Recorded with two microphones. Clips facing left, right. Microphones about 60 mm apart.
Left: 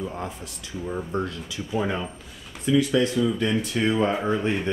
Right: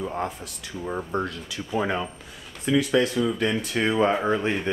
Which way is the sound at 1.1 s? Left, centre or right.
Centre.